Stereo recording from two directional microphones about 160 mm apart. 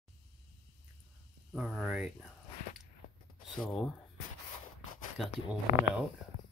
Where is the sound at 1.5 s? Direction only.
5° right (ahead or behind).